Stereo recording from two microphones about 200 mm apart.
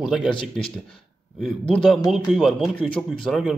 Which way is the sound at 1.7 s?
Centre (ahead or behind).